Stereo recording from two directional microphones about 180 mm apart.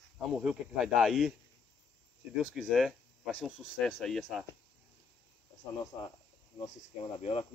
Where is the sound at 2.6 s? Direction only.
Centre (ahead or behind).